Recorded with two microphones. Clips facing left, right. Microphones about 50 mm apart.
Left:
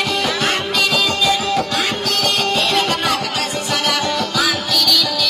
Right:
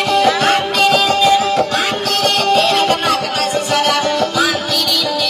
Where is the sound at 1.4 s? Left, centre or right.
Right.